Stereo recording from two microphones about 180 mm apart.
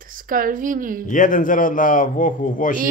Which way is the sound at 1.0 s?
45° left (ahead or behind).